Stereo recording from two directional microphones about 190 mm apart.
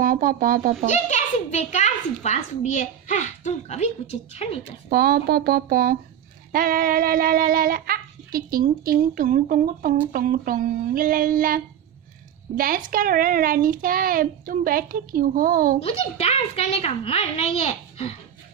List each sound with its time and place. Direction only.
0.0 s a child's voice: 50° right (ahead or behind)
0.8 s a child's voice: 40° left (ahead or behind)
4.9 s a child's voice: 55° right (ahead or behind)
15.8 s a child's voice: 30° left (ahead or behind)